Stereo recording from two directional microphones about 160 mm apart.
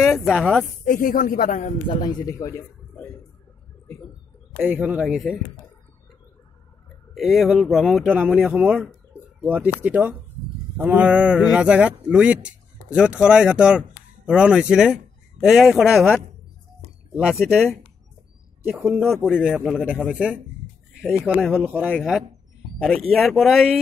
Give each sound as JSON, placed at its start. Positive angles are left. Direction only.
{"t": 0.1, "sound": "speech", "side_deg": 0}
{"t": 0.8, "sound": "speech", "side_deg": 55}
{"t": 1.9, "sound": "speech", "side_deg": 25}
{"t": 4.6, "sound": "speech", "side_deg": -10}
{"t": 7.2, "sound": "speech", "side_deg": 0}
{"t": 18.7, "sound": "speech", "side_deg": -10}
{"t": 19.0, "sound": "speech", "side_deg": 0}
{"t": 21.5, "sound": "speech", "side_deg": -10}
{"t": 21.9, "sound": "speech", "side_deg": 0}